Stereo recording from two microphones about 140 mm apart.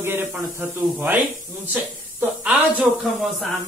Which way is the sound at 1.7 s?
10° right (ahead or behind).